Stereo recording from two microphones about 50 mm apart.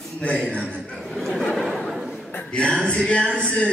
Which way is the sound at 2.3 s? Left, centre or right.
Left.